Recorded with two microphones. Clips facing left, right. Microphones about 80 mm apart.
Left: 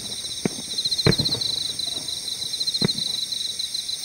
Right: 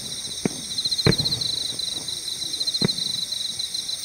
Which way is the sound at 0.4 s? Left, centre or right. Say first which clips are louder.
Even; centre.